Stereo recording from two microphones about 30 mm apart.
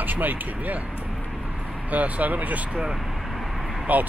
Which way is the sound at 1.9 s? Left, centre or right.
Right.